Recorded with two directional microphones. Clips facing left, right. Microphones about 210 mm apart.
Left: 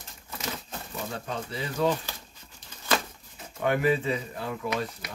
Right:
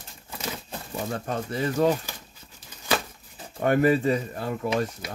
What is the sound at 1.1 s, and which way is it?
Speech, 50° right (ahead or behind).